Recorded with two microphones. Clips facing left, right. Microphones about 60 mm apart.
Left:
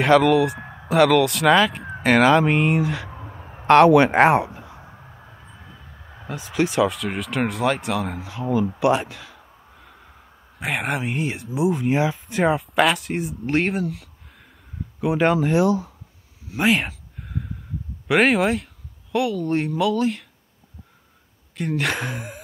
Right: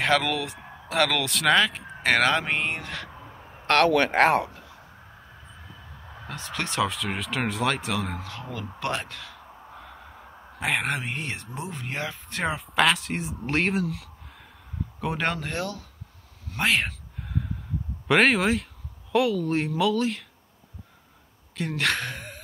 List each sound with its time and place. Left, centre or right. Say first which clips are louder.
0.0 s speech: left 9 dB; centre
6.2 s speech: left 9 dB; centre
10.6 s speech: left 2 dB; centre
16.4 s a sound: left 4 dB; centre
18.0 s speech: left 3 dB; centre
21.5 s speech: left 3 dB; centre